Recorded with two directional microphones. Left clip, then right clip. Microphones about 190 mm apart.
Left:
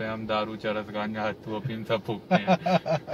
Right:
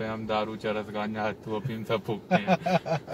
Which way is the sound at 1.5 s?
20° right (ahead or behind).